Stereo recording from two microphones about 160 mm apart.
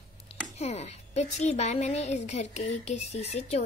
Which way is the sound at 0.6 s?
40° left (ahead or behind).